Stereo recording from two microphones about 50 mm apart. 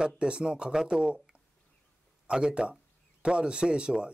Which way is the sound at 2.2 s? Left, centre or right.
Centre.